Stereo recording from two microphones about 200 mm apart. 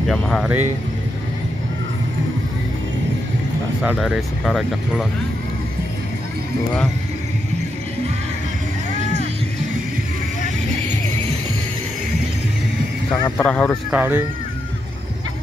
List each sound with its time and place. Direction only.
0.1 s speech: centre (ahead or behind)
3.9 s speech: centre (ahead or behind)
13.2 s speech: 5° left (ahead or behind)
13.8 s speech: 10° right (ahead or behind)